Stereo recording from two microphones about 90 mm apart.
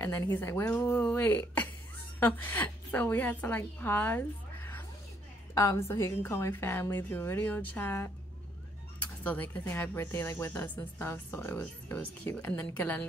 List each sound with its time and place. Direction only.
0.0 s a woman's voice: 25° left (ahead or behind)
0.7 s a woman's voice: 15° left (ahead or behind)
5.5 s a woman's voice: 35° left (ahead or behind)
9.2 s a woman's voice: 20° left (ahead or behind)